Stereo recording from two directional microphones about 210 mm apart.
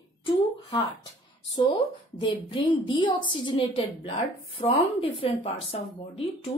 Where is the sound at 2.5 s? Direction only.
25° left (ahead or behind).